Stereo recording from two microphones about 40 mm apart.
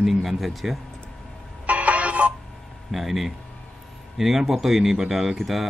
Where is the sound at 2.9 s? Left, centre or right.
Centre.